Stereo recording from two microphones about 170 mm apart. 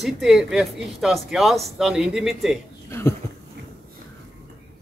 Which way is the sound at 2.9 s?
15° left (ahead or behind).